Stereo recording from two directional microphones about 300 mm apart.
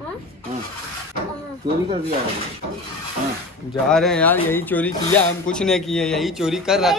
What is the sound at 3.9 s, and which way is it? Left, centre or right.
Speech, centre.